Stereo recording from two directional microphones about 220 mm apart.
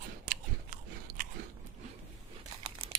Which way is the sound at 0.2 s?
35° right (ahead or behind).